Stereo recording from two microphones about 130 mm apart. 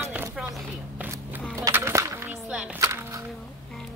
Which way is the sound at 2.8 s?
25° right (ahead or behind).